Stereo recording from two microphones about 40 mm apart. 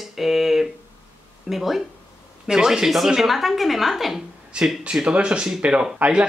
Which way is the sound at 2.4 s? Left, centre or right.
Centre.